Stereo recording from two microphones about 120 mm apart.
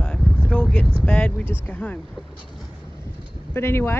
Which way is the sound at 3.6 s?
20° left (ahead or behind).